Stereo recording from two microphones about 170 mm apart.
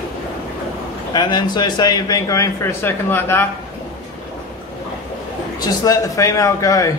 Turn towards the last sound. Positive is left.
turn(degrees=20)  # may be behind; listen again after turning